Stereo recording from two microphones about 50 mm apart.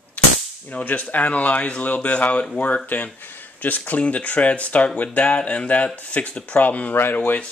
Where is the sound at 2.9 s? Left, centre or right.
Left.